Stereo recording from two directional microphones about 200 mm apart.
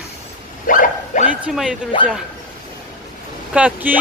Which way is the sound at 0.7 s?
40° left (ahead or behind).